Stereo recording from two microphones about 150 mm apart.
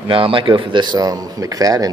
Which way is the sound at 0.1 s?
35° right (ahead or behind).